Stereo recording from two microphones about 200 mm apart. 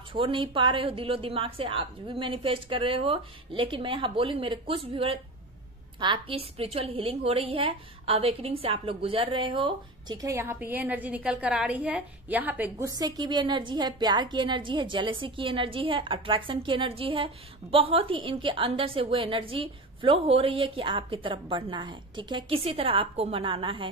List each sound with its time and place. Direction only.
0.1 s a woman's voice: 25° right (ahead or behind)